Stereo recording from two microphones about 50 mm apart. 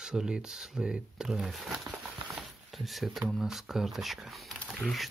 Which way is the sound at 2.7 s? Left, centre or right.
Centre.